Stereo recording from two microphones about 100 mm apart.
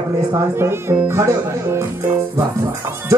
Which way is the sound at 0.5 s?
25° right (ahead or behind).